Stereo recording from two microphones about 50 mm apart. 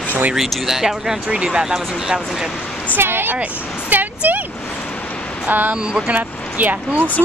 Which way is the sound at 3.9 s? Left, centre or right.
Right.